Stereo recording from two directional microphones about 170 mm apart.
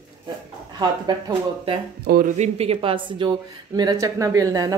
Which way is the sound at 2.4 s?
35° right (ahead or behind).